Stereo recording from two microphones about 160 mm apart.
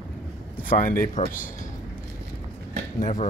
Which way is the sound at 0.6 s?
60° left (ahead or behind).